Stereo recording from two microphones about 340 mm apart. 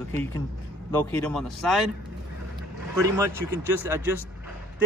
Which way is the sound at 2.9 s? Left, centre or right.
Centre.